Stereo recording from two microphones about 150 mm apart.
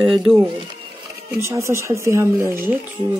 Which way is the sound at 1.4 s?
20° right (ahead or behind).